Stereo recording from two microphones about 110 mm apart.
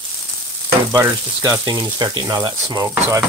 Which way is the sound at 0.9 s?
25° right (ahead or behind).